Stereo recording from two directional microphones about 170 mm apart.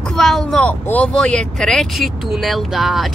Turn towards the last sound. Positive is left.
turn(degrees=0)  # may be behind; listen again after turning